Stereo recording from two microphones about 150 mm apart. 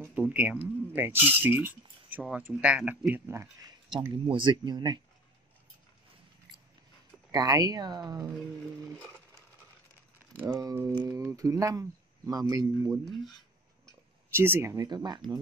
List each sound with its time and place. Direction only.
0.3 s speech: 10° right (ahead or behind)
4.1 s speech: 35° right (ahead or behind)
7.2 s speech: 25° right (ahead or behind)
10.1 s speech: 15° right (ahead or behind)
14.3 s speech: 15° right (ahead or behind)